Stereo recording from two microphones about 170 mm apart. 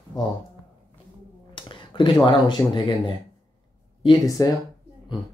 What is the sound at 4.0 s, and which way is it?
Speech, 25° left (ahead or behind).